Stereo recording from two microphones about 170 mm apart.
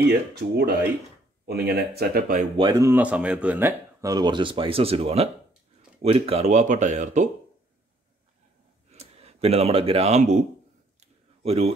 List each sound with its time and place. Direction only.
0.3 s speech: 70° right (ahead or behind)
2.7 s speech: 15° right (ahead or behind); by 7.2 s 45° right (ahead or behind)
8.9 s speech: 40° right (ahead or behind)
11.4 s a man's voice: 35° right (ahead or behind)